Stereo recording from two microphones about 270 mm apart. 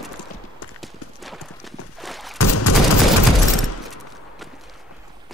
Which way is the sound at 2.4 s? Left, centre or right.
Left.